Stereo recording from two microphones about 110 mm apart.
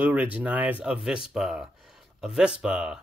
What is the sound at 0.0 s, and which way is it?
Speech, 15° right (ahead or behind).